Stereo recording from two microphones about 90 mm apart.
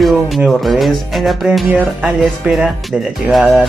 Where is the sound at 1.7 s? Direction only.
15° right (ahead or behind).